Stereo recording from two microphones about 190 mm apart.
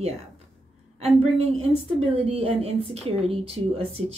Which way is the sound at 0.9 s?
30° right (ahead or behind).